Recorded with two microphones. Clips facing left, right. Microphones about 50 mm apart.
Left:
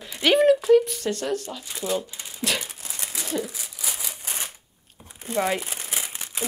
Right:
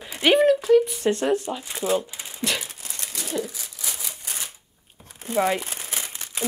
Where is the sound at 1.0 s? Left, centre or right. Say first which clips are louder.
Right 5 dB; right.